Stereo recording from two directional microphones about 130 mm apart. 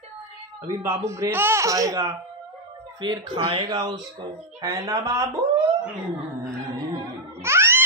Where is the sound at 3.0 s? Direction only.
35° right (ahead or behind).